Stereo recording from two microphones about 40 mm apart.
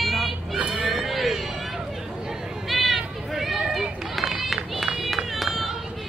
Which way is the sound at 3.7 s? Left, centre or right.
Centre.